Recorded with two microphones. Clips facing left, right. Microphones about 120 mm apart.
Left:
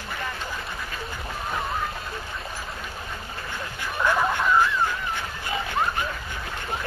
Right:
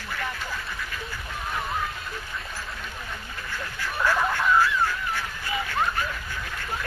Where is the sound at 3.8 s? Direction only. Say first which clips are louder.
Left 1 dB; 20° left (ahead or behind).